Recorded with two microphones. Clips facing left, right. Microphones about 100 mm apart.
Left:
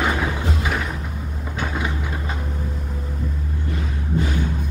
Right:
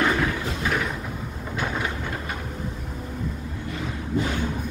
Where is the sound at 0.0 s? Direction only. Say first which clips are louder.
Even; 10° left (ahead or behind).